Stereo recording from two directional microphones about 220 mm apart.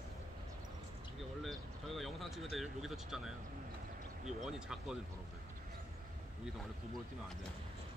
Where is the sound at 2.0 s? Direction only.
Centre (ahead or behind).